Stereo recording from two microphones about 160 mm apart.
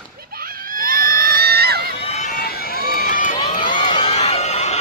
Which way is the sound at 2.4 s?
70° left (ahead or behind).